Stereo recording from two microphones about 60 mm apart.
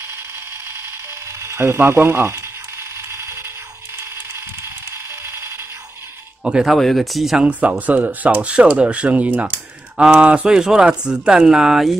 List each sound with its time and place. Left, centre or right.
0.7 s ratchet: right
4.0 s a sound: right
6.4 s speech: centre
6.8 s speech: centre
7.8 s speech: right
10.5 s speech: centre